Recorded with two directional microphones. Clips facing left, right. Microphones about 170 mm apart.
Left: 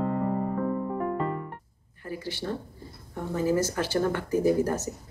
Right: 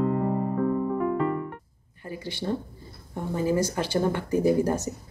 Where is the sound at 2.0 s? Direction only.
20° right (ahead or behind).